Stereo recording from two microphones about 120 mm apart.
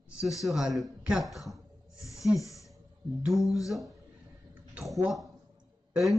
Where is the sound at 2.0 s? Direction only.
25° left (ahead or behind).